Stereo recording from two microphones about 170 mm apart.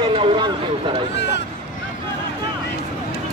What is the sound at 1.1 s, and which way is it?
Speech, 90° left.